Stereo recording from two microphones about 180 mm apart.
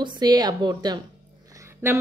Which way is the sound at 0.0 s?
25° right (ahead or behind).